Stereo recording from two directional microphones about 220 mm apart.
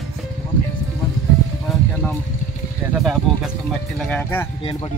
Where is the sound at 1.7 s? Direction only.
Centre (ahead or behind).